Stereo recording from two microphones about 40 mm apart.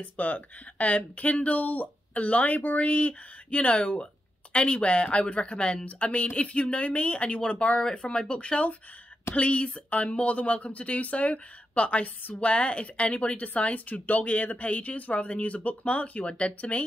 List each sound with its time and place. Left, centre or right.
0.0 s speech: left
13.7 s speech: left